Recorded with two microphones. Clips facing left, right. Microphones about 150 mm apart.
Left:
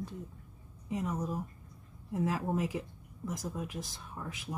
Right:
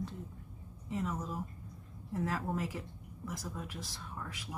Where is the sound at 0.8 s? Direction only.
15° left (ahead or behind).